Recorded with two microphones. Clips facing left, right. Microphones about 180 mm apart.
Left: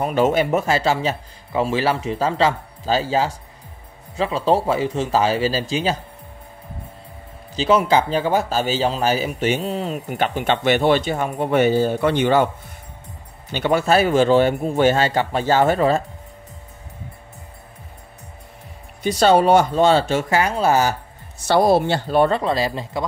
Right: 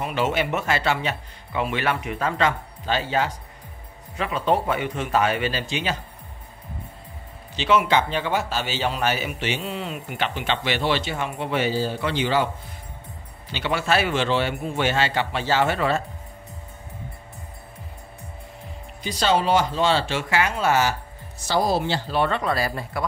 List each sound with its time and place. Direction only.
0.0 s a man's voice: 40° left (ahead or behind)
7.5 s speech: 35° left (ahead or behind); by 12.4 s 50° left (ahead or behind)
13.5 s speech: 45° left (ahead or behind)
19.1 s speech: 50° left (ahead or behind); by 20.9 s 35° left (ahead or behind)
21.5 s speech: 60° left (ahead or behind)
22.3 s speech: 25° left (ahead or behind)